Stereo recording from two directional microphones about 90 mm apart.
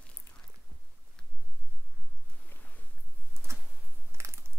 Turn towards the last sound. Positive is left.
turn(degrees=-30)  # may be behind; listen again after turning